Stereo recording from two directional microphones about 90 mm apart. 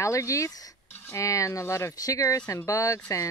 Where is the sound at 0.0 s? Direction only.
35° left (ahead or behind).